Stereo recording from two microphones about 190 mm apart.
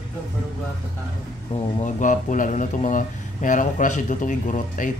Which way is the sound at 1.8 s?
40° left (ahead or behind).